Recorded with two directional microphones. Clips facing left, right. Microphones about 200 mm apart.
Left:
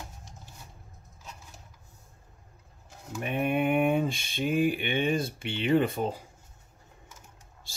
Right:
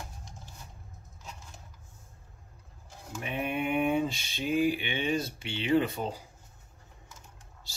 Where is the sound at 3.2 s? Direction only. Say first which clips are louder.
Left 5 dB; 50° left (ahead or behind).